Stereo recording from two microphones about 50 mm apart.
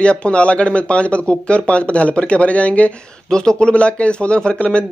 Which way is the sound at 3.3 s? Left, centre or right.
Centre.